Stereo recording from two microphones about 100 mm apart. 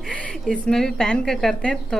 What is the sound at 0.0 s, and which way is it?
A woman's voice, 10° left (ahead or behind).